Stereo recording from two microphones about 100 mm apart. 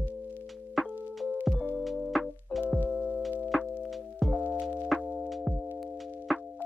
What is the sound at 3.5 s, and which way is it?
Music, centre (ahead or behind).